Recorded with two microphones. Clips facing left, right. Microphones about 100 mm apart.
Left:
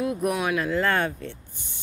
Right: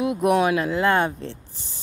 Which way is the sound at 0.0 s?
20° right (ahead or behind).